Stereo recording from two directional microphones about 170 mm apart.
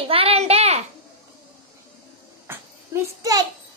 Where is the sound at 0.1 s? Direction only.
35° right (ahead or behind).